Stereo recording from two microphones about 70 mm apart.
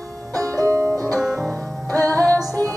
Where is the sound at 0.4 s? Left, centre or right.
Right.